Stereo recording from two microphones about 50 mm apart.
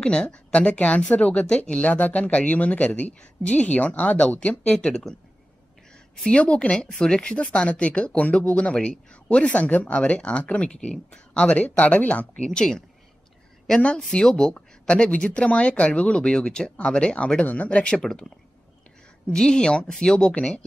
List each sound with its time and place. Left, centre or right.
0.0 s speech: centre
4.7 s speech: centre
6.2 s speech: left
12.4 s speech: centre
14.2 s speech: centre
14.5 s speech: left
19.3 s speech: centre
20.3 s speech: left